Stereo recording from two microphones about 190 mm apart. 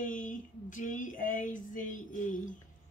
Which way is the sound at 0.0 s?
45° left (ahead or behind).